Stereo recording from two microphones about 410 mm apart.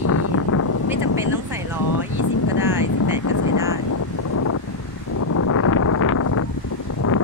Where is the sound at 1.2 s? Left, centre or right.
Centre.